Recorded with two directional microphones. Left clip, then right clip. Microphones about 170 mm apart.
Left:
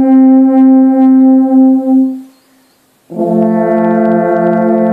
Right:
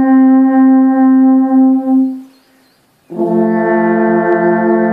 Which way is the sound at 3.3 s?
35° left (ahead or behind).